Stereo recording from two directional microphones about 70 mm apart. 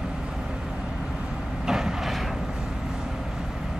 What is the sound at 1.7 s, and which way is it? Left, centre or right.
Vehicle, centre.